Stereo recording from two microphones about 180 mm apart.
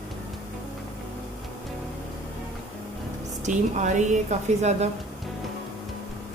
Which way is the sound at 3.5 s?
40° right (ahead or behind).